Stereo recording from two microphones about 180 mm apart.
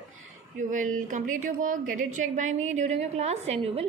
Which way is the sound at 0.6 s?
45° right (ahead or behind).